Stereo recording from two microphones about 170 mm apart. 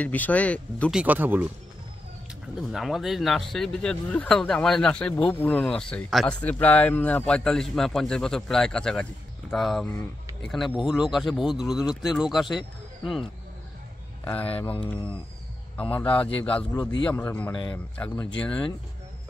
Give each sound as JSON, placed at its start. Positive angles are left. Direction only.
{"t": 0.0, "sound": "speech", "side_deg": 10}
{"t": 0.9, "sound": "speech", "side_deg": -10}
{"t": 2.7, "sound": "speech", "side_deg": 0}
{"t": 14.2, "sound": "speech", "side_deg": 10}
{"t": 15.8, "sound": "speech", "side_deg": 10}